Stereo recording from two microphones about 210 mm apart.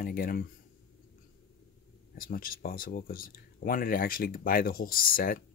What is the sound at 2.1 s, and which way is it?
Speech, 40° left (ahead or behind).